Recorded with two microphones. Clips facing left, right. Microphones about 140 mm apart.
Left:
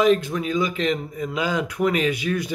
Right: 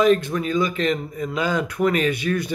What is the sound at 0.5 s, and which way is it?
Speech, 10° left (ahead or behind).